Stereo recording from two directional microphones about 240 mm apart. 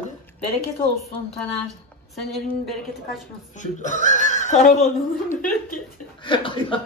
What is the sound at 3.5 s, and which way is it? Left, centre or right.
A man's voice, left.